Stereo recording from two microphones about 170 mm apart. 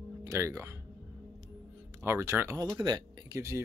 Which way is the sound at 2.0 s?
15° right (ahead or behind).